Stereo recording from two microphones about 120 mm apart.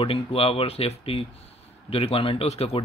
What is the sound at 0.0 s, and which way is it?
A man's voice, 50° left (ahead or behind).